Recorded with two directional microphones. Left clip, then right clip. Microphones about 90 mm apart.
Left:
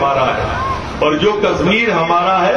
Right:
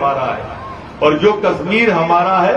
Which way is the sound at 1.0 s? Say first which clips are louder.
Right 2 dB; 30° right (ahead or behind).